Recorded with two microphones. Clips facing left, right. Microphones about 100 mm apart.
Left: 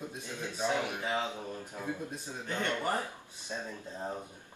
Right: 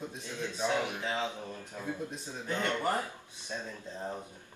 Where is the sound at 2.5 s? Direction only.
15° right (ahead or behind).